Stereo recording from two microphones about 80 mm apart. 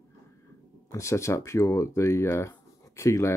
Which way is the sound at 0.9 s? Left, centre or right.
Left.